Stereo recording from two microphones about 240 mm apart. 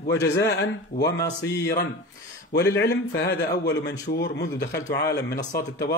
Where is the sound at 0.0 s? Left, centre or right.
Left.